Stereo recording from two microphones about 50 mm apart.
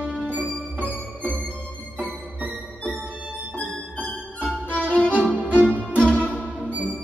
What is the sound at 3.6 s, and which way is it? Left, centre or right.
Music, left.